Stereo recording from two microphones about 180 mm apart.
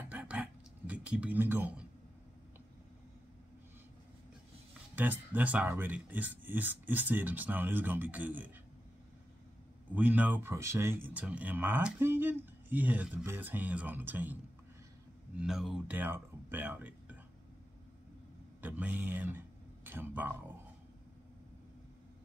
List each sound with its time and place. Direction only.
0.1 s a sound: 5° right (ahead or behind)
4.9 s speech: 10° right (ahead or behind)
9.9 s speech: 10° right (ahead or behind)
18.6 s speech: 10° right (ahead or behind)